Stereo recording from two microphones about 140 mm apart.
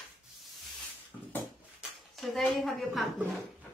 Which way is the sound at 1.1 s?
25° left (ahead or behind).